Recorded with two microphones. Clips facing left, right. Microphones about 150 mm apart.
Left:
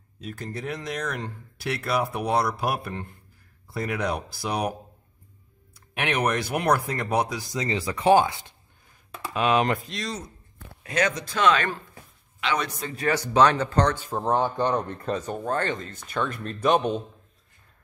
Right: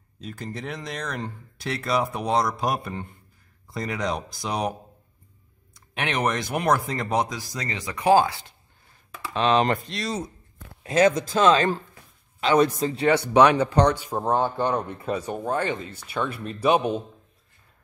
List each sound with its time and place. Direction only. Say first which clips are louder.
0.2 s speech: even; centre (ahead or behind)
5.9 s speech: even; 5° left (ahead or behind)
7.4 s speech: left 4 dB; 20° left (ahead or behind)
7.7 s speech: even; 30° left (ahead or behind)
9.3 s speech: right 1 dB; 5° left (ahead or behind)
10.8 s a sound: right 6 dB; 30° right (ahead or behind)
11.3 s a man's voice: left 1 dB; 25° right (ahead or behind)
13.3 s speech: right 1 dB; 10° right (ahead or behind)